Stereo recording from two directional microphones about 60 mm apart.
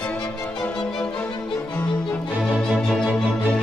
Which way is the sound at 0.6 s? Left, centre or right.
Centre.